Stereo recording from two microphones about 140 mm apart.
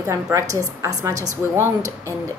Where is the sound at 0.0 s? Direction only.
25° right (ahead or behind).